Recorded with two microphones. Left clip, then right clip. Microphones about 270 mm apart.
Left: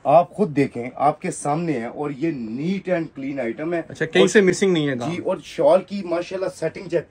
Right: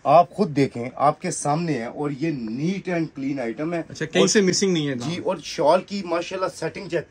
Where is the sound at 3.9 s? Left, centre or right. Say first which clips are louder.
Left 3 dB; centre.